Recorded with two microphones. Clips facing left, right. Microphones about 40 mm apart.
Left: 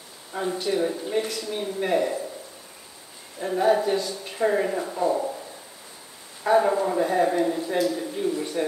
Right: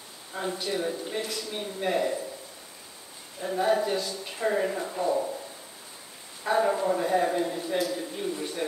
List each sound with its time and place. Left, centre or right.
0.3 s a man's voice: centre
3.3 s a man's voice: centre
6.4 s a man's voice: centre
7.8 s a man's voice: centre